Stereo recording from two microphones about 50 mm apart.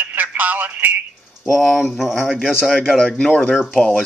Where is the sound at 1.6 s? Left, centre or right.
Centre.